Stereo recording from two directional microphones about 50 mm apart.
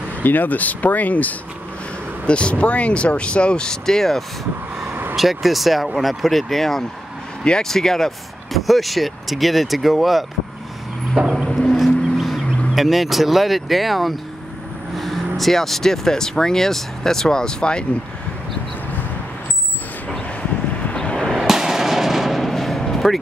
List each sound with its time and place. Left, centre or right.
0.2 s speech: left
2.2 s speech: left
5.1 s speech: centre
11.1 s vehicle: centre
11.4 s a sound: centre
11.7 s a sound: centre
12.7 s speech: centre
20.8 s a sound: left
21.3 s fireworks: centre
21.5 s artillery fire: centre